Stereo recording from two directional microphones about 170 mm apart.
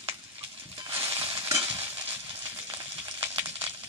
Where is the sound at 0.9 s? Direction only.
15° right (ahead or behind).